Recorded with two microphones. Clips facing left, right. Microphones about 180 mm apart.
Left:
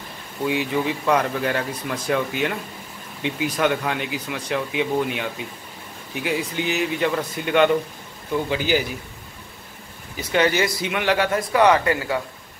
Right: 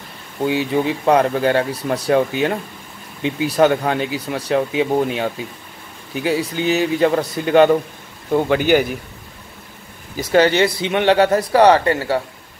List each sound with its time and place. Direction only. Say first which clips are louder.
0.5 s speech: right 4 dB; 30° right (ahead or behind)
8.3 s a man's voice: right 7 dB; 55° right (ahead or behind)
10.3 s speech: right 6 dB; 30° right (ahead or behind)